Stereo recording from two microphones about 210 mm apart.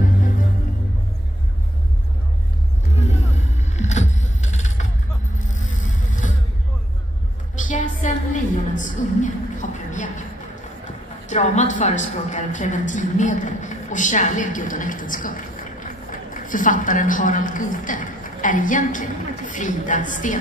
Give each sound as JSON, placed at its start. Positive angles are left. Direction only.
{"t": 3.0, "sound": "vehicle", "side_deg": 35}
{"t": 7.6, "sound": "a sound", "side_deg": 35}
{"t": 11.2, "sound": "a woman's voice", "side_deg": 35}